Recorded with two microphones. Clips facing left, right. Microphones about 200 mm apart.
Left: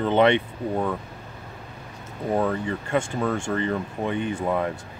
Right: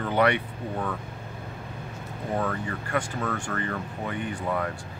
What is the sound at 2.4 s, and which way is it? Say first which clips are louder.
Speech: left 5 dB; 25° left (ahead or behind).